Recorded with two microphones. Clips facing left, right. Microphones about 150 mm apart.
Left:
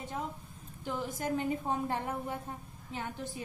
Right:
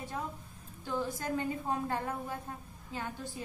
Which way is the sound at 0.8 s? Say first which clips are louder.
Even; 15° left (ahead or behind).